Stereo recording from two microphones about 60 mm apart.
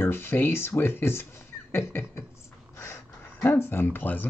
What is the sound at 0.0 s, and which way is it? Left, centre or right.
Speech, left.